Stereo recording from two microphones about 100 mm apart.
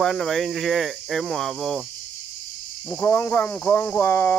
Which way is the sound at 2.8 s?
25° left (ahead or behind).